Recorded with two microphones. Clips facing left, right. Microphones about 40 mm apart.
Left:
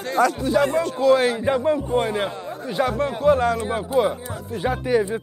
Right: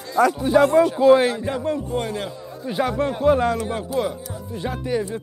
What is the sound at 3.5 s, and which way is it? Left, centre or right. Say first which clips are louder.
Speech: left 3 dB; centre.